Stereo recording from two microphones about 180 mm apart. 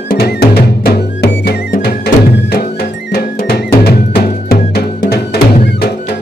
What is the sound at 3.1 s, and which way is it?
Music, 60° left (ahead or behind).